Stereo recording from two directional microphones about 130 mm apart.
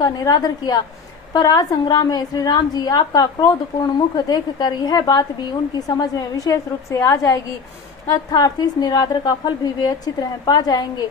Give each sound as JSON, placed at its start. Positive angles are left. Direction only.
{"t": 0.0, "sound": "a woman's voice", "side_deg": 30}